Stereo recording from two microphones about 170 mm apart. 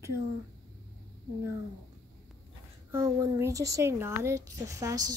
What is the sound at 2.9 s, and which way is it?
Speech, 20° right (ahead or behind).